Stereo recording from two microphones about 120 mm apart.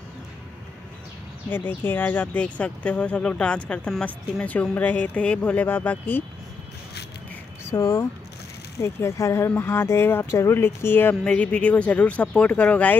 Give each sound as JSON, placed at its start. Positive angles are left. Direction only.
{"t": 1.5, "sound": "speech", "side_deg": 15}
{"t": 7.6, "sound": "speech", "side_deg": 20}